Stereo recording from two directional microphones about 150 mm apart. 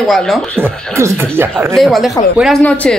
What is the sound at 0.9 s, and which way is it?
Speech, 20° right (ahead or behind).